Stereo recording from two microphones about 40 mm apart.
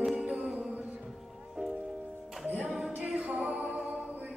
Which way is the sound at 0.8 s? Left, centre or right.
Right.